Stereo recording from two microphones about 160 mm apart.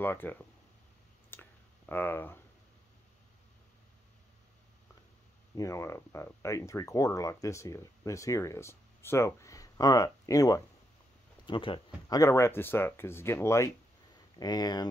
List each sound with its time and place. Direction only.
0.0 s speech: 10° left (ahead or behind)
1.3 s clicking: 10° left (ahead or behind)
5.6 s speech: 20° left (ahead or behind)
11.4 s speech: 30° left (ahead or behind)
12.2 s speech: 20° left (ahead or behind)